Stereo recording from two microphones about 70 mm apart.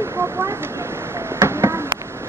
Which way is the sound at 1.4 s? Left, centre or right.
Right.